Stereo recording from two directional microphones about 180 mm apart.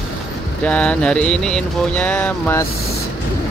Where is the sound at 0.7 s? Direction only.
5° left (ahead or behind).